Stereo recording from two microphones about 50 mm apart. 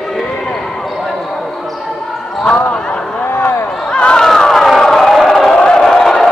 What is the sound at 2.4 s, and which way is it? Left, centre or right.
Basketball bounce, left.